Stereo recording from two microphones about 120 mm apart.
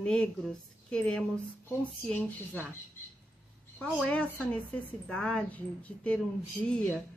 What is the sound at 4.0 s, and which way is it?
A woman's voice, 10° left (ahead or behind).